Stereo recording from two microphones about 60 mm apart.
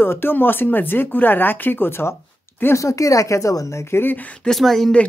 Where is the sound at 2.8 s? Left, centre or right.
Left.